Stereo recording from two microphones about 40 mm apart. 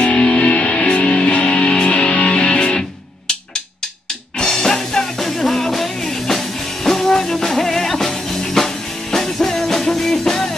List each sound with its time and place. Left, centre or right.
0.0 s music: left
4.4 s music: centre